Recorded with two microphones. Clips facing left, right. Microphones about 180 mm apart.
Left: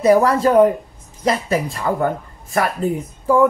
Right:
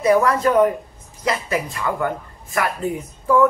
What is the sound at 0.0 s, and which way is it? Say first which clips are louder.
Speech: left 3 dB; 35° left (ahead or behind).